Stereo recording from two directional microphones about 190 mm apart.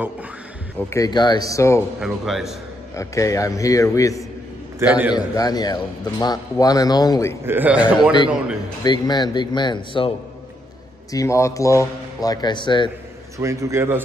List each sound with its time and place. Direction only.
0.7 s a man's voice: 15° left (ahead or behind)
2.0 s speech: centre (ahead or behind)
3.0 s a man's voice: 15° left (ahead or behind)
4.7 s a man's voice: 10° right (ahead or behind)
5.1 s speech: 20° left (ahead or behind)
7.4 s a man's voice: 10° right (ahead or behind)
8.8 s speech: 20° left (ahead or behind)
13.4 s a man's voice: 15° right (ahead or behind)